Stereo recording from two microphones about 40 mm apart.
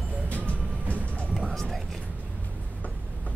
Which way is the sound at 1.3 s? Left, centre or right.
Centre.